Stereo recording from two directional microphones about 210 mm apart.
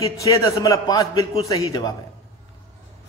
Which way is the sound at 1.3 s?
30° left (ahead or behind).